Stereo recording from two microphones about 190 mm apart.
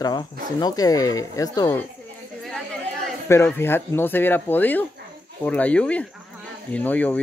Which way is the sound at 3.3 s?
15° left (ahead or behind).